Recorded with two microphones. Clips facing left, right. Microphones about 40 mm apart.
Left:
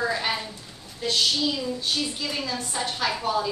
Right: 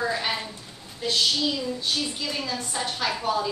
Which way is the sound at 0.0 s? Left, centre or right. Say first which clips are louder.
Left 1 dB; centre.